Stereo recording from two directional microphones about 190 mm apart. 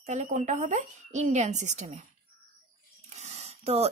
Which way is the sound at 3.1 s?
35° right (ahead or behind).